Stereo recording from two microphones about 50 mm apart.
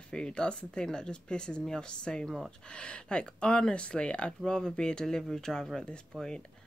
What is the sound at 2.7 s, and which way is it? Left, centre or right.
Speech, left.